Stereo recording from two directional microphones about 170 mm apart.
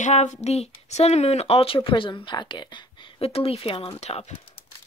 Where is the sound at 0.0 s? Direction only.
45° left (ahead or behind).